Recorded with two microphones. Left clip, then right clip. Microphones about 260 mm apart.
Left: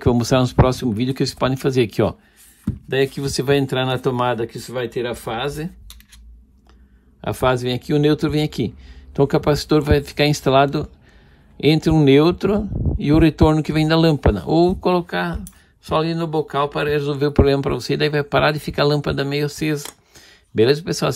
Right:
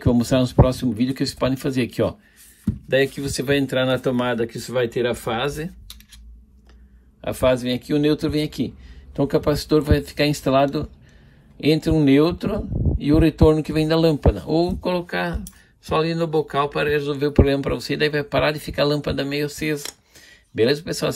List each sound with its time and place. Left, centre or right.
0.0 s speech: left
2.6 s speech: centre
7.2 s speech: left